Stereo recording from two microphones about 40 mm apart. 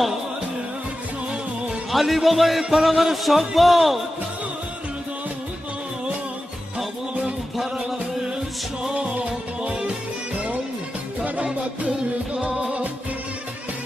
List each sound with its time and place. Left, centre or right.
1.9 s speech: centre
7.5 s music: centre
8.9 s music: right
11.2 s music: right
12.4 s music: centre